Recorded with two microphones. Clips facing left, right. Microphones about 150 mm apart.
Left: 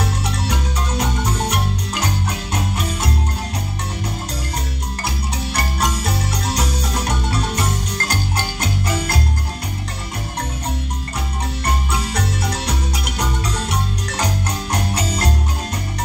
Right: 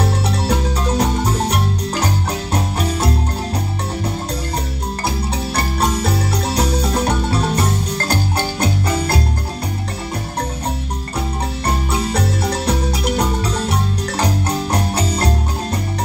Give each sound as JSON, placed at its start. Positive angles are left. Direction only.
{"t": 0.0, "sound": "music", "side_deg": -35}
{"t": 5.6, "sound": "music", "side_deg": -30}
{"t": 11.6, "sound": "marimba", "side_deg": -30}